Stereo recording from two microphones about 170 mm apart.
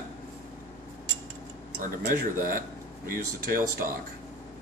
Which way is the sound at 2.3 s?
55° right (ahead or behind).